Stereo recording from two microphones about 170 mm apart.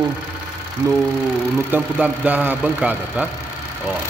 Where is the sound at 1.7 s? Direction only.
10° right (ahead or behind).